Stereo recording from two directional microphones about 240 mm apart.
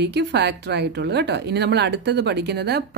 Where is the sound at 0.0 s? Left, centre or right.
Right.